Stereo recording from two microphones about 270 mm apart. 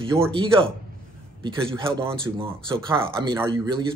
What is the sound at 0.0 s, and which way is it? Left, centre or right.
Speech, centre.